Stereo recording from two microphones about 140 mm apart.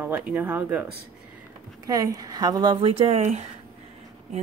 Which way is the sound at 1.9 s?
25° right (ahead or behind).